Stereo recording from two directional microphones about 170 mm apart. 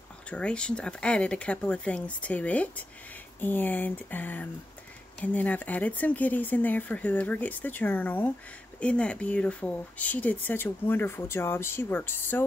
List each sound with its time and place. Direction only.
0.3 s speech: 5° left (ahead or behind)